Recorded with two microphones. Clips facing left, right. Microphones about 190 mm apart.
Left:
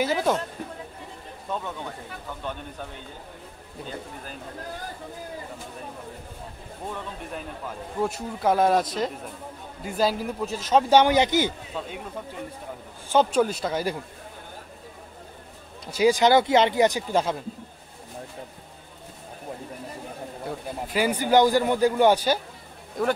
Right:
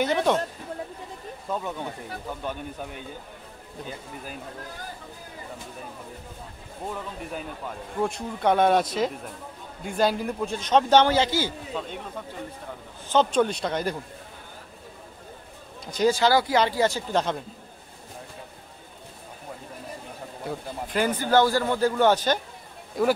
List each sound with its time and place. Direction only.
0.0 s a man's voice: 5° left (ahead or behind)
1.5 s speech: 10° right (ahead or behind)
6.9 s a man's voice: centre (ahead or behind); by 11.5 s 20° left (ahead or behind)
11.7 s a man's voice: 5° left (ahead or behind)
13.1 s a man's voice: 10° left (ahead or behind)
15.8 s a man's voice: 10° left (ahead or behind)
20.4 s a man's voice: 5° left (ahead or behind)
23.0 s a man's voice: centre (ahead or behind)